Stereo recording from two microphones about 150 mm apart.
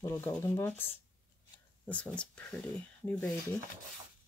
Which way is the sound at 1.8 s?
10° left (ahead or behind).